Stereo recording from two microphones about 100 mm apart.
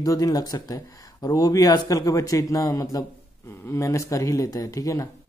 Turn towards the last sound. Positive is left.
turn(degrees=35)  # may be behind; listen again after turning